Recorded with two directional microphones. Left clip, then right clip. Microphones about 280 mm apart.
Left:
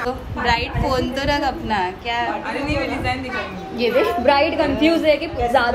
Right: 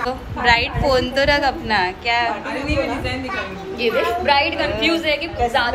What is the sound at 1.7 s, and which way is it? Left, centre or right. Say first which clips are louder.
A woman's voice: right 3 dB; centre.